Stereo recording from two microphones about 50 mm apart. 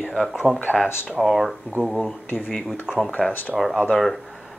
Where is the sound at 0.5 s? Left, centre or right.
Right.